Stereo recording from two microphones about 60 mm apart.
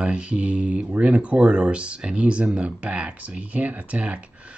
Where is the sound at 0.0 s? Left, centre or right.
Centre.